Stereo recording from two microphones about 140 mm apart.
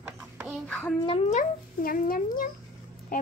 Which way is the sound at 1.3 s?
70° left (ahead or behind).